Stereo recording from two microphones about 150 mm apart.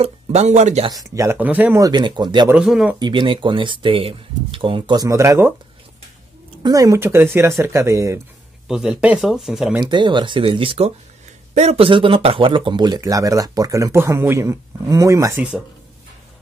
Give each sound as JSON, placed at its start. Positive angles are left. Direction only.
{"t": 0.0, "sound": "speech", "side_deg": -45}
{"t": 0.8, "sound": "a man's voice", "side_deg": -25}
{"t": 1.9, "sound": "a man's voice", "side_deg": -30}
{"t": 2.5, "sound": "speech", "side_deg": -5}
{"t": 3.0, "sound": "speech", "side_deg": -35}
{"t": 6.6, "sound": "speech", "side_deg": -25}
{"t": 8.6, "sound": "speech", "side_deg": -5}
{"t": 9.8, "sound": "a man's voice", "side_deg": -30}